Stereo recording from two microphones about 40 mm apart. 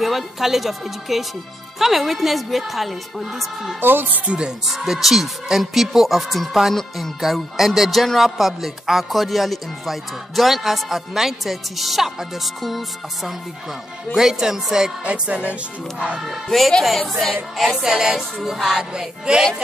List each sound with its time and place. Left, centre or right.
0.0 s speech: centre
3.8 s speech: right
4.3 s speech: right
4.6 s speech: centre
6.7 s music: centre
7.2 s music: centre
8.2 s speech: centre
14.1 s music: centre
15.0 s music: right
16.4 s speech: centre
17.6 s music: centre